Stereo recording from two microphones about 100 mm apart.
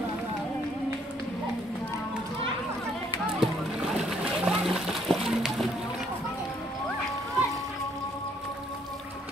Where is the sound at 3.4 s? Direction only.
5° right (ahead or behind).